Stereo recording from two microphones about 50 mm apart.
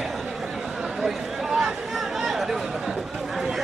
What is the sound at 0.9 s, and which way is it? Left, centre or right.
Chatter, centre.